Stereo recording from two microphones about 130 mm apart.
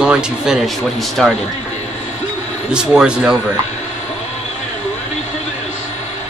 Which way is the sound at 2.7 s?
5° right (ahead or behind).